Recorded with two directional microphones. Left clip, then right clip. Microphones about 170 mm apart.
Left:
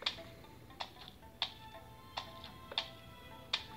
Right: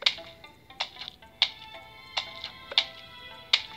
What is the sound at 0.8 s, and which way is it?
Music, 25° right (ahead or behind).